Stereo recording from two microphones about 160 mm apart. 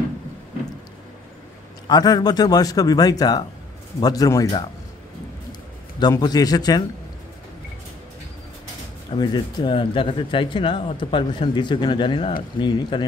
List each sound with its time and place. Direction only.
1.9 s a man's voice: 25° left (ahead or behind)
9.1 s a man's voice: 25° left (ahead or behind)